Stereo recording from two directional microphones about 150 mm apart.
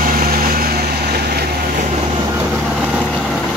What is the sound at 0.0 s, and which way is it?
Vehicle, 70° right (ahead or behind).